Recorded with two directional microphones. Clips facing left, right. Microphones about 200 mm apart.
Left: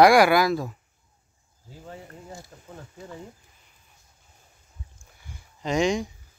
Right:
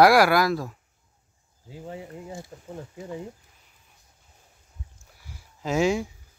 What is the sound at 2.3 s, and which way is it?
Speech, 20° right (ahead or behind).